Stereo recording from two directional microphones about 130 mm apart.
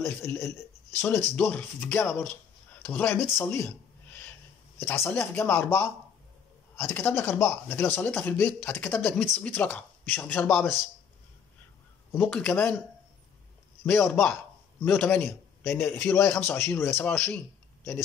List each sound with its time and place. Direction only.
0.0 s a man's voice: 20° left (ahead or behind)
12.1 s a man's voice: 10° left (ahead or behind)
13.8 s a man's voice: 15° left (ahead or behind)